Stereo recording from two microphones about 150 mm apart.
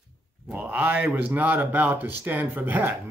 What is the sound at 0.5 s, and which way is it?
Speech, 10° right (ahead or behind).